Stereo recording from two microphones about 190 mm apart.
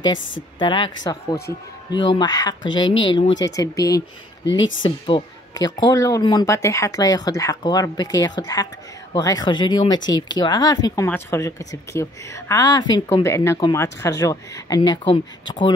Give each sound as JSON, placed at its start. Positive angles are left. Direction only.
{"t": 0.6, "sound": "speech", "side_deg": 25}
{"t": 4.5, "sound": "speech", "side_deg": 85}
{"t": 4.8, "sound": "speech", "side_deg": 25}